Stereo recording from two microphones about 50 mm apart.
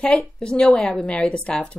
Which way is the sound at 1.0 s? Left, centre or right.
Left.